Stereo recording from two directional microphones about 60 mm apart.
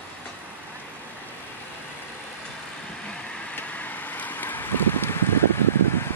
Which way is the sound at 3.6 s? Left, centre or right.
Left.